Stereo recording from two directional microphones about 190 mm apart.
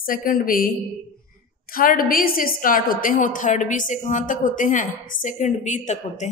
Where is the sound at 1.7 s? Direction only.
50° left (ahead or behind).